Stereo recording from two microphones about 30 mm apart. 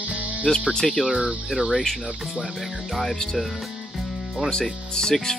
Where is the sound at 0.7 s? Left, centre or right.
Centre.